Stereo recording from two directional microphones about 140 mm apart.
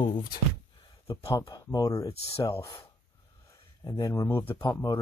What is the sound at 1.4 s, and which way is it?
Speech, 30° left (ahead or behind).